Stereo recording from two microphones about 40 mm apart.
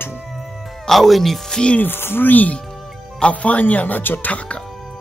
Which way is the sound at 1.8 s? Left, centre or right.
Left.